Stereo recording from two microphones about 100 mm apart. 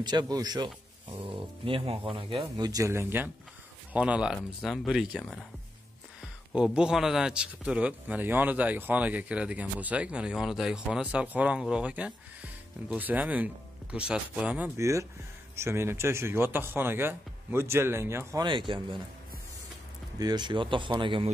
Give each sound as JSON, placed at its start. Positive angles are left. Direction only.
{"t": 0.0, "sound": "speech", "side_deg": -45}
{"t": 1.1, "sound": "speech", "side_deg": -60}
{"t": 2.5, "sound": "speech", "side_deg": -40}
{"t": 3.9, "sound": "speech", "side_deg": -10}
{"t": 6.5, "sound": "speech", "side_deg": -10}
{"t": 14.8, "sound": "speech", "side_deg": -30}
{"t": 18.4, "sound": "speech", "side_deg": -55}
{"t": 20.2, "sound": "speech", "side_deg": -45}